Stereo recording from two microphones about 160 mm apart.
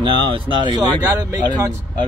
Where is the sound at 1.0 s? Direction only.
15° right (ahead or behind).